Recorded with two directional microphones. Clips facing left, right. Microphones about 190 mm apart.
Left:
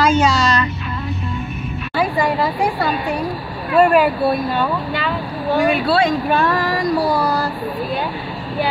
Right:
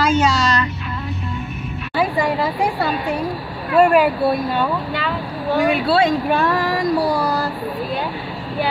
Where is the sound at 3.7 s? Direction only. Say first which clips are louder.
Even; 15° right (ahead or behind).